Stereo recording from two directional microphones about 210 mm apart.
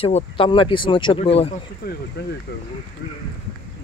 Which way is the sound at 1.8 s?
45° left (ahead or behind).